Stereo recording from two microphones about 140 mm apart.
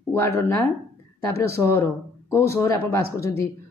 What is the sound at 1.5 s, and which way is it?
Speech, 15° left (ahead or behind).